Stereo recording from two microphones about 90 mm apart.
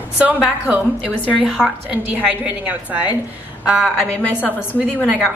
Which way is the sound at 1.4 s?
5° right (ahead or behind).